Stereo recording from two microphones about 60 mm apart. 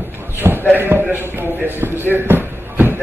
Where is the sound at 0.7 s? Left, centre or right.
Right.